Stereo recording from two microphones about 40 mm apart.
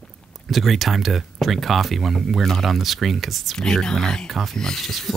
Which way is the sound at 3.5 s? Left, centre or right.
Centre.